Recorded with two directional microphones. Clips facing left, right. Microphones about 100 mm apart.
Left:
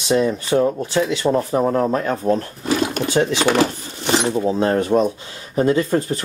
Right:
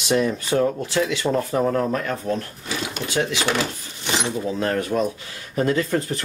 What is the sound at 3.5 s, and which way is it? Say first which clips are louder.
Speech: left 7 dB; 45° left (ahead or behind).